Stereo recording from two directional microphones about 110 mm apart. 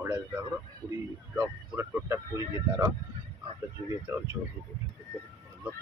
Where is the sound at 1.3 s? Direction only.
20° right (ahead or behind).